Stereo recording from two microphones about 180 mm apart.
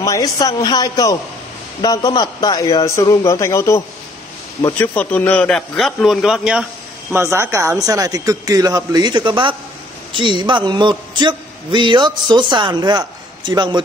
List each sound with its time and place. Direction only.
0.0 s a man's voice: 20° left (ahead or behind); by 6.6 s 5° right (ahead or behind)
7.1 s a man's voice: 15° right (ahead or behind)